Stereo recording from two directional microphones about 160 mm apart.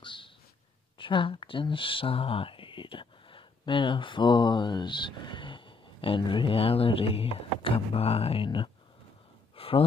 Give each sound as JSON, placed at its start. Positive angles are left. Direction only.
{"t": 0.0, "sound": "a sound", "side_deg": 30}
{"t": 0.9, "sound": "speech", "side_deg": 30}
{"t": 9.6, "sound": "gasp", "side_deg": 35}